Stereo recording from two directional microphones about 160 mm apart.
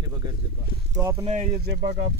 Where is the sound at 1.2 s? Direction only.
45° right (ahead or behind).